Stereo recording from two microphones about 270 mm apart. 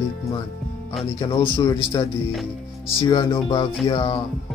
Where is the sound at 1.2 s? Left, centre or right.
Centre.